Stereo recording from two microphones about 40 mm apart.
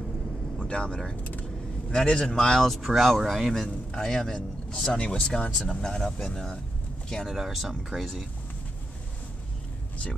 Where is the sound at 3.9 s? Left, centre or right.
Centre.